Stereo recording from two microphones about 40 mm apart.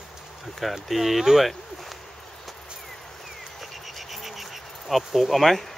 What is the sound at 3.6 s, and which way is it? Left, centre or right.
Insect, centre.